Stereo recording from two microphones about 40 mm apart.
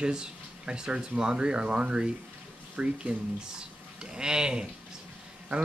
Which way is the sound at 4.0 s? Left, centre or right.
Right.